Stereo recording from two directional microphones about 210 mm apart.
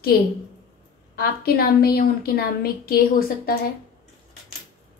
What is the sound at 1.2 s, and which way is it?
A woman's voice, 45° left (ahead or behind).